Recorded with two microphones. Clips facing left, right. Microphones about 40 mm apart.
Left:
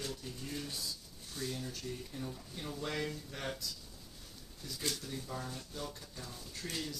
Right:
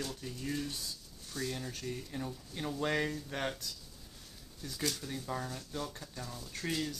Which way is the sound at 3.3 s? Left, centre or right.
Right.